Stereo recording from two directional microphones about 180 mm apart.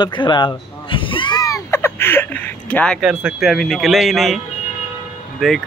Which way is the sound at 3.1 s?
5° right (ahead or behind).